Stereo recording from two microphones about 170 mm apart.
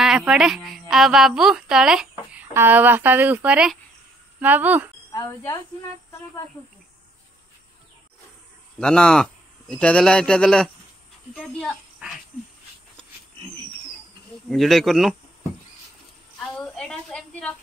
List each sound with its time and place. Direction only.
0.0 s a woman's voice: 5° right (ahead or behind)
5.1 s speech: 15° left (ahead or behind)
8.7 s a child's voice: 5° left (ahead or behind)
14.5 s a woman's voice: centre (ahead or behind)
16.3 s a sound: 5° left (ahead or behind)